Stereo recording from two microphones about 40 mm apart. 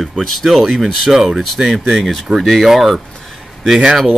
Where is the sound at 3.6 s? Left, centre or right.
Centre.